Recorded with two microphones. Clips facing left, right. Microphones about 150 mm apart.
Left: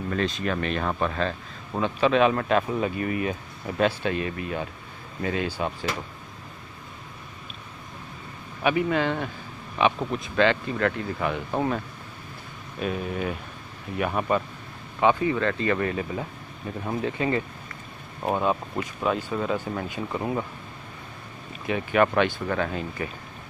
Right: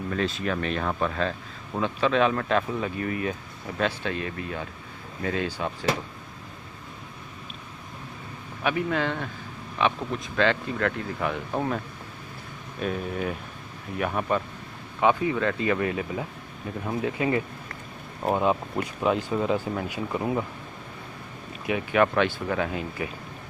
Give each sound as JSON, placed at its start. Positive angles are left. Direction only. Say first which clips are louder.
{"t": 0.1, "sound": "speech", "louder": "left 1 dB", "side_deg": -5}
{"t": 8.6, "sound": "speech", "louder": "left 3 dB", "side_deg": 5}
{"t": 12.8, "sound": "speech", "louder": "even", "side_deg": 5}
{"t": 21.6, "sound": "speech", "louder": "left 1 dB", "side_deg": -10}
{"t": 22.0, "sound": "speech", "louder": "left 1 dB", "side_deg": 0}